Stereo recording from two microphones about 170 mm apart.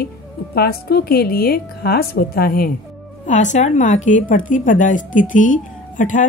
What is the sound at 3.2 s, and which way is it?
A woman's voice, 45° left (ahead or behind).